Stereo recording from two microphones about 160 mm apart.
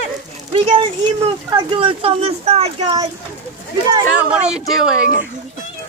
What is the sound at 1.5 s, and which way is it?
Speech, 30° right (ahead or behind).